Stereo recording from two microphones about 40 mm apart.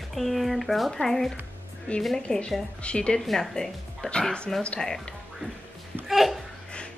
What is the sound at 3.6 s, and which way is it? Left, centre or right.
Speech, centre.